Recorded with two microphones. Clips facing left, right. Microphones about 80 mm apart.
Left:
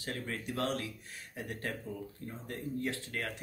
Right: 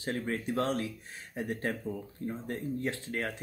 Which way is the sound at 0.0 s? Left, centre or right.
Right.